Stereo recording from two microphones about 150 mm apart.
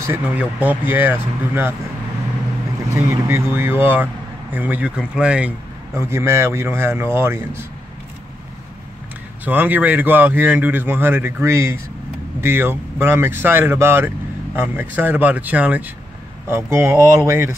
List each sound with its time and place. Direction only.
0.0 s speech: 15° right (ahead or behind)
2.9 s speech: 15° right (ahead or behind)
5.9 s speech: 20° right (ahead or behind)
9.4 s speech: 10° right (ahead or behind)